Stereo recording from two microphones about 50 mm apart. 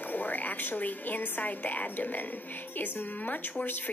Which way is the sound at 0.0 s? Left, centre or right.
Left.